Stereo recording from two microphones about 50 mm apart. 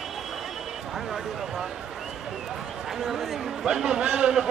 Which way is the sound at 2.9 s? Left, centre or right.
Centre.